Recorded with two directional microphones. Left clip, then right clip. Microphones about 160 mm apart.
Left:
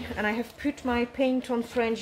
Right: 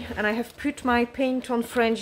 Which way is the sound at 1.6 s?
35° right (ahead or behind).